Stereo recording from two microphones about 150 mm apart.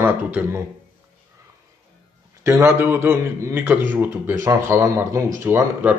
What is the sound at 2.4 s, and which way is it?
Speech, 20° right (ahead or behind).